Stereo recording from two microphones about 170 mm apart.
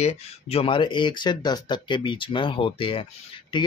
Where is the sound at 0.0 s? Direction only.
35° left (ahead or behind).